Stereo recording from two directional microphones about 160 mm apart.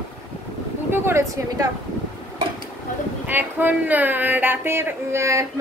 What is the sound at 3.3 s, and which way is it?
A woman's voice, 10° right (ahead or behind).